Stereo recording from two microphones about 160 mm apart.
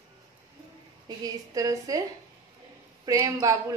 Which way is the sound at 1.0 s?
20° right (ahead or behind).